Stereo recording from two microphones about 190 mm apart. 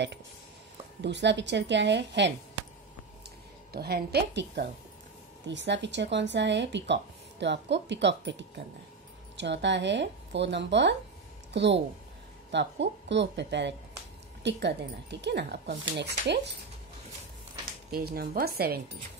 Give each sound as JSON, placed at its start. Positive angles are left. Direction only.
{"t": 1.0, "sound": "speech", "side_deg": -65}
{"t": 3.7, "sound": "speech", "side_deg": -55}
{"t": 17.9, "sound": "speech", "side_deg": -55}